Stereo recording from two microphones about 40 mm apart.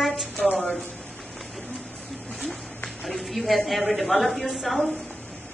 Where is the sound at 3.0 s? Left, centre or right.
Centre.